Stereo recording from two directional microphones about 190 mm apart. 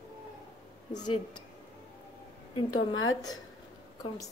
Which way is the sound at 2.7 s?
90° left.